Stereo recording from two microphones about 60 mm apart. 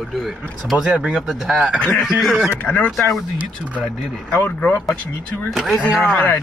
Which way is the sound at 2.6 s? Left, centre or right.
Left.